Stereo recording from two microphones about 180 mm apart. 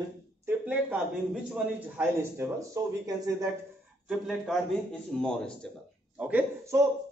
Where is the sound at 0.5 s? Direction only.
5° right (ahead or behind).